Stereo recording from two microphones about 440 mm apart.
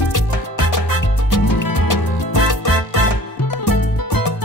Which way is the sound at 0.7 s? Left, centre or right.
Left.